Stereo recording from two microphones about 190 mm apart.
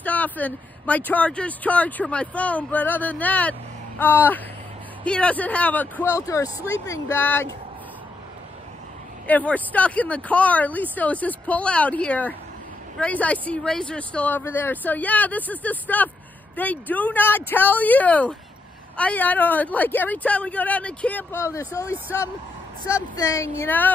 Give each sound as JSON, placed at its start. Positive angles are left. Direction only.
{"t": 0.0, "sound": "speech", "side_deg": 10}
{"t": 9.3, "sound": "speech", "side_deg": 10}
{"t": 23.1, "sound": "speech", "side_deg": 15}